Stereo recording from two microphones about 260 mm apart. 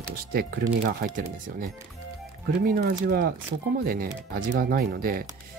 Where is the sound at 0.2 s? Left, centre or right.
Right.